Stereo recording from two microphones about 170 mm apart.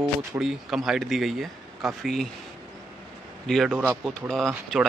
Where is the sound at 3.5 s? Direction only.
Centre (ahead or behind).